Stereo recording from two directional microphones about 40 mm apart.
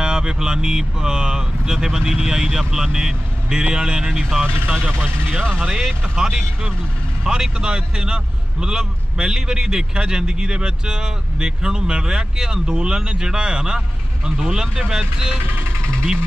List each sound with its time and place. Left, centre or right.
0.0 s a man's voice: centre